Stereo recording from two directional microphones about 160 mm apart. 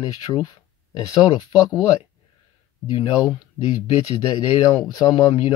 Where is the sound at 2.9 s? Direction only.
25° left (ahead or behind).